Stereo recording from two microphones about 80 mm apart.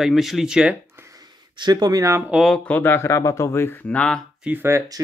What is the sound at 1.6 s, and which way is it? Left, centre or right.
Speech, right.